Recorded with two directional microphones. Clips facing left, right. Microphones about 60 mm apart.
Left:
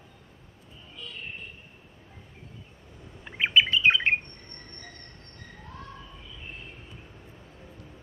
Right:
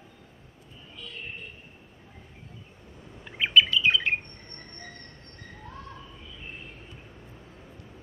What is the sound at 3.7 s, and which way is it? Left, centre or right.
Bird, left.